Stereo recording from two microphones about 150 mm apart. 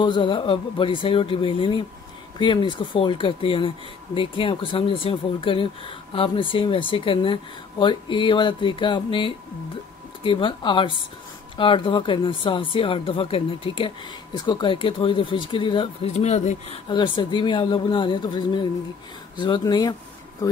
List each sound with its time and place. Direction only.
0.0 s speech: 30° left (ahead or behind)
16.1 s speech: 50° left (ahead or behind)
16.9 s speech: 30° left (ahead or behind)